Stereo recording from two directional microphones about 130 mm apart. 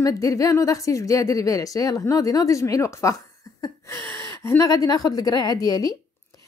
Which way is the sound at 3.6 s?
20° left (ahead or behind).